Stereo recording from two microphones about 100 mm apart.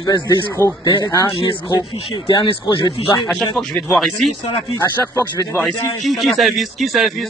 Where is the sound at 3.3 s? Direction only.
5° left (ahead or behind).